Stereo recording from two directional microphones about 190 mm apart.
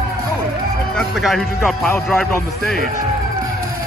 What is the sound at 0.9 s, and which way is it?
Speech, centre (ahead or behind).